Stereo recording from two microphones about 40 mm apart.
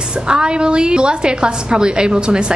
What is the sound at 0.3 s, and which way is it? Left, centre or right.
A woman's voice, right.